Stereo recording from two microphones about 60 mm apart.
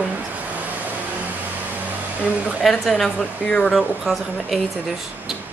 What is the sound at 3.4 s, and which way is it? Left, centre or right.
Speech, left.